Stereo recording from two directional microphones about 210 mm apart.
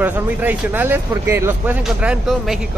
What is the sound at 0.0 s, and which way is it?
Speech, 10° right (ahead or behind).